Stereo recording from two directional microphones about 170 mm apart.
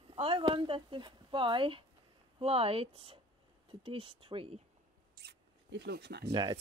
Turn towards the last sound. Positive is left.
turn(degrees=-30)  # may be behind; listen again after turning